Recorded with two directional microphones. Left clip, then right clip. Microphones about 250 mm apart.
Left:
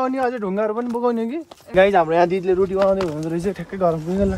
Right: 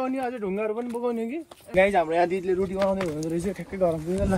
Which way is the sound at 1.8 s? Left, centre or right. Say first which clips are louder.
Left 6 dB; centre.